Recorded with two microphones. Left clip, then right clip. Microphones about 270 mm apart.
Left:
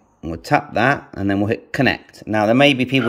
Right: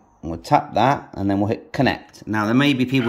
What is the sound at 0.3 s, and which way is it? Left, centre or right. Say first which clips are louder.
A man's voice: even; centre.